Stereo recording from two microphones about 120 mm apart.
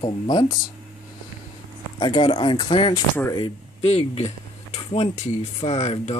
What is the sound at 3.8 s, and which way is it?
Speech, 60° left (ahead or behind).